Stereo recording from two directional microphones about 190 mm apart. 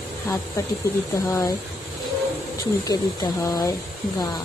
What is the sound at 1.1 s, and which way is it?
Speech, 15° left (ahead or behind).